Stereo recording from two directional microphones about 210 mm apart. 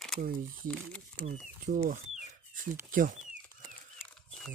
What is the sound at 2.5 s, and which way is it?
Speech, 40° right (ahead or behind).